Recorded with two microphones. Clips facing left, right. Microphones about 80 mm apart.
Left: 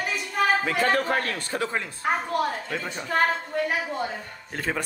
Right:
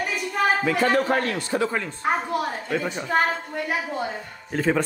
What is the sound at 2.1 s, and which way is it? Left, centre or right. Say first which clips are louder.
A woman's voice: right 1 dB; centre.